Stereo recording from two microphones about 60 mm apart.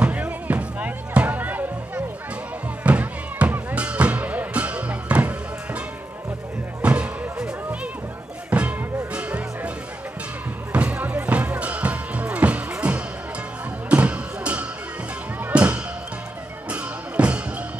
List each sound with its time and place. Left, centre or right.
0.0 s music: right
6.8 s music: right
10.7 s music: right
13.8 s a sound: right
15.5 s music: centre